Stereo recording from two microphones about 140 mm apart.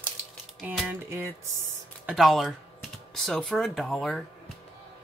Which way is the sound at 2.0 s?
Centre (ahead or behind).